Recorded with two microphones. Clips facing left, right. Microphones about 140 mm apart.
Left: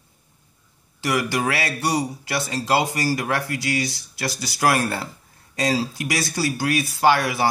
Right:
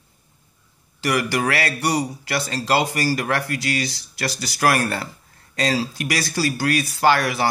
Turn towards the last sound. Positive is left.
turn(degrees=15)  # may be behind; listen again after turning